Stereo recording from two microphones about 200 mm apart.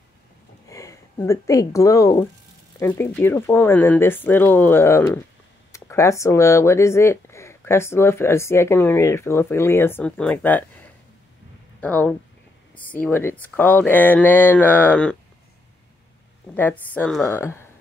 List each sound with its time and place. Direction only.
0.7 s speech: 15° left (ahead or behind)
11.8 s speech: 10° left (ahead or behind)
16.5 s speech: 10° left (ahead or behind)